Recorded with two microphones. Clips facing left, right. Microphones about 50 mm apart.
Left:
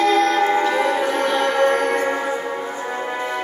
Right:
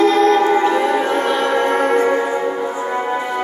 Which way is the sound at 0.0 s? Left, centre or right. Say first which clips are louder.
Right 4 dB; right.